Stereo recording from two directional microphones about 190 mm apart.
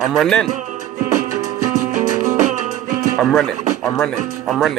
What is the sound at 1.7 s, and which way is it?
Music, 40° right (ahead or behind).